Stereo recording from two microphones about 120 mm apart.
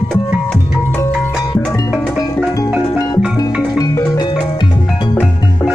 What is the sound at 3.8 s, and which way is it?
Music, 30° left (ahead or behind).